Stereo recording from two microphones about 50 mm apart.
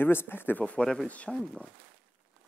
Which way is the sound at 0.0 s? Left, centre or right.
Left.